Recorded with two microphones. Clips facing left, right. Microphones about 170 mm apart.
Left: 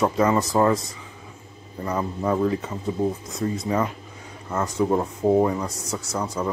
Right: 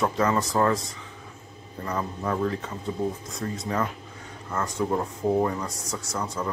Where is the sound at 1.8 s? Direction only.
15° left (ahead or behind).